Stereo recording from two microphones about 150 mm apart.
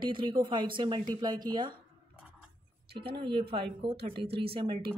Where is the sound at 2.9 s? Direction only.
90° right.